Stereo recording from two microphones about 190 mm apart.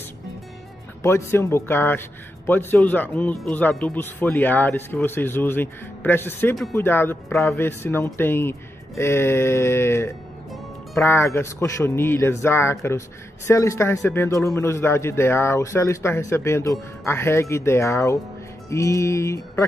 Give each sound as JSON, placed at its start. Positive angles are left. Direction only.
{"t": 1.0, "sound": "a man's voice", "side_deg": 15}